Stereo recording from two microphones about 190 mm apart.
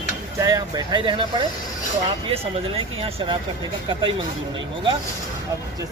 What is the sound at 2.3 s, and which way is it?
Speech, 30° right (ahead or behind).